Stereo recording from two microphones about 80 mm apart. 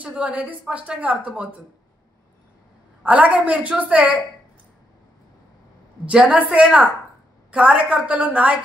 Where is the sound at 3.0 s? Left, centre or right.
Centre.